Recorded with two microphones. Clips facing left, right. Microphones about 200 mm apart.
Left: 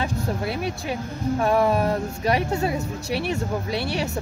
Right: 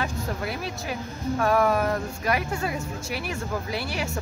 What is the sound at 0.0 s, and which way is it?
Speech, 25° left (ahead or behind).